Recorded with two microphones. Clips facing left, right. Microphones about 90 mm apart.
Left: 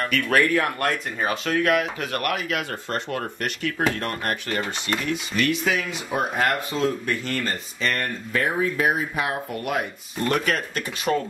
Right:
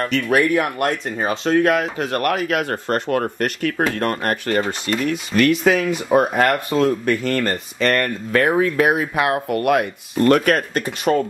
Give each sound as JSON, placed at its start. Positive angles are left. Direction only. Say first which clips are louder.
{"t": 0.3, "sound": "speech", "louder": "right 3 dB", "side_deg": -15}